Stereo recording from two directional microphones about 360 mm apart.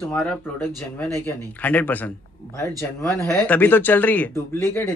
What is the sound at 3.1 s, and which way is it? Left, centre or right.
Speech, centre.